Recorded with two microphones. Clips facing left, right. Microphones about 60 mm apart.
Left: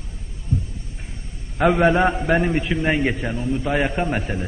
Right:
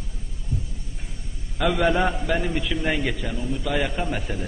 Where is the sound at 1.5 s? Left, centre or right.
Left.